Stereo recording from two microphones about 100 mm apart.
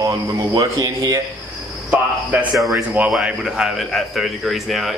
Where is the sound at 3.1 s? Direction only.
5° right (ahead or behind).